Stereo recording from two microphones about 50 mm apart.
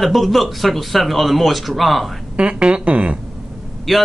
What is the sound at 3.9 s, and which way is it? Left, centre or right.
Speech, centre.